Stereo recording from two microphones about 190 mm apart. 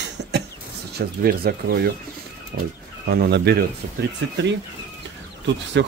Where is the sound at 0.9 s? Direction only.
55° right (ahead or behind).